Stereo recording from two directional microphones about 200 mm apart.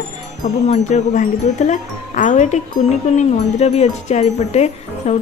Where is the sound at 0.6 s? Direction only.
35° left (ahead or behind).